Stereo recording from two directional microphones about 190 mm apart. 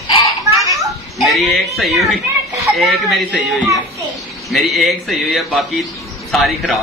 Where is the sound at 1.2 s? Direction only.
Centre (ahead or behind).